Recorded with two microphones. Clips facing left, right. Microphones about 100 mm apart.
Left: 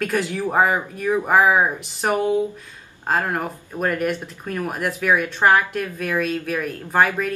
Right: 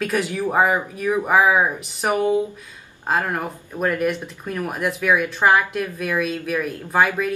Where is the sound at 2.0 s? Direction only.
15° right (ahead or behind).